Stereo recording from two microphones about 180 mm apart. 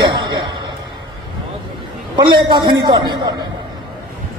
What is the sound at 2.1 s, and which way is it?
A man's voice, 25° right (ahead or behind).